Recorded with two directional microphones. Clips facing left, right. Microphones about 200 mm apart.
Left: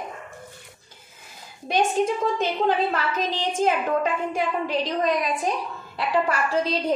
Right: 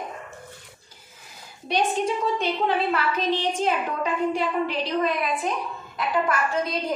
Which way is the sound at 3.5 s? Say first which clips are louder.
Left 3 dB; 45° left (ahead or behind).